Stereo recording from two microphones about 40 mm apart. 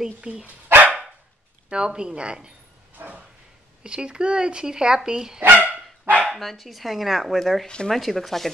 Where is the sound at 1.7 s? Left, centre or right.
Right.